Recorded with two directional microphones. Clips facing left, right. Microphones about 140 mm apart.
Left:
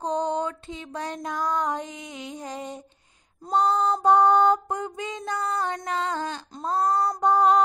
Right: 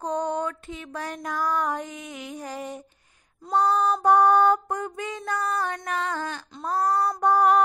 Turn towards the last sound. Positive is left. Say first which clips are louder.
# even
turn(degrees=20)  # may be behind; listen again after turning